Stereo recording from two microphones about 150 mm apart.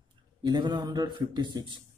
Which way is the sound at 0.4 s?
30° right (ahead or behind).